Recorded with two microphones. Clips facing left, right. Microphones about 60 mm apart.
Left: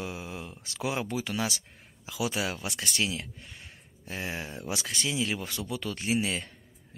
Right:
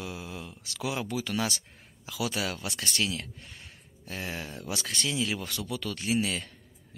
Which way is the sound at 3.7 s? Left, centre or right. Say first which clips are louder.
Left 1 dB; centre.